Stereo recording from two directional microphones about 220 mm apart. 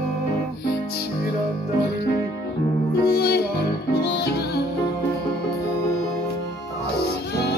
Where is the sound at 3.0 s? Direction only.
45° left (ahead or behind).